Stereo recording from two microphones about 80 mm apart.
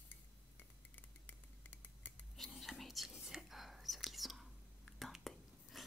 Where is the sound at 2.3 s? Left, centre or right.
Centre.